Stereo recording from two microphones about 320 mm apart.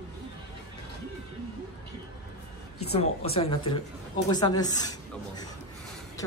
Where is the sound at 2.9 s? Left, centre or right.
Centre.